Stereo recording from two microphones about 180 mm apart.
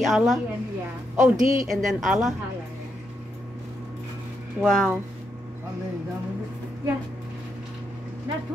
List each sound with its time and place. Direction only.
0.0 s a woman's voice: centre (ahead or behind)
1.1 s speech: 45° right (ahead or behind)
1.7 s a woman's voice: centre (ahead or behind)
4.6 s a woman's voice: 5° left (ahead or behind)